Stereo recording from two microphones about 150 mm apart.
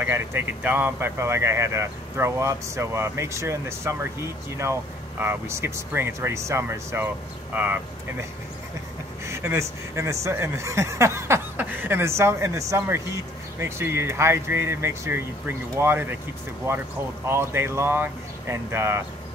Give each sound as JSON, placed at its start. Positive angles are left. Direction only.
{"t": 0.0, "sound": "speech", "side_deg": -15}
{"t": 5.2, "sound": "speech", "side_deg": -15}
{"t": 17.3, "sound": "speech", "side_deg": -15}